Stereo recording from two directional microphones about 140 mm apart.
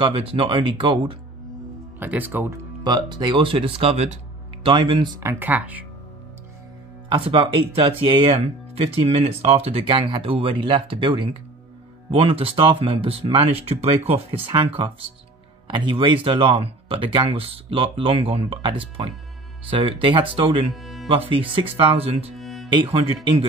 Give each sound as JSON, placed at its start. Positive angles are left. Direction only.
{"t": 0.0, "sound": "speech", "side_deg": -40}
{"t": 2.0, "sound": "speech", "side_deg": -15}
{"t": 2.8, "sound": "speech", "side_deg": -30}
{"t": 4.6, "sound": "speech", "side_deg": -35}
{"t": 5.2, "sound": "speech", "side_deg": -15}
{"t": 7.1, "sound": "speech", "side_deg": -40}
{"t": 20.7, "sound": "music", "side_deg": 0}
{"t": 21.3, "sound": "speech", "side_deg": -40}
{"t": 22.4, "sound": "music", "side_deg": 0}